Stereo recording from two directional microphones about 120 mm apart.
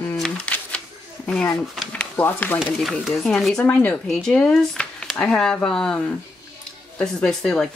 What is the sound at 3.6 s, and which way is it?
Speech, 10° left (ahead or behind).